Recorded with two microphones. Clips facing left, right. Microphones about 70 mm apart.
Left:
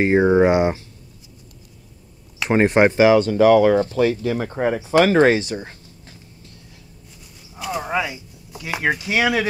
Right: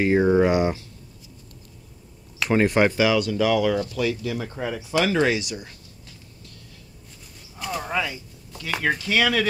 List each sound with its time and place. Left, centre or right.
0.0 s speech: left
2.5 s speech: left
7.5 s speech: centre